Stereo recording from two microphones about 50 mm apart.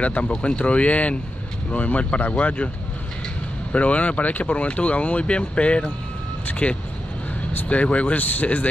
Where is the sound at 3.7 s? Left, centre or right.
Left.